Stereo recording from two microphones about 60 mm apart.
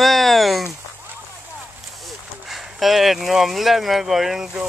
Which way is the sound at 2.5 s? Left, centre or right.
Centre.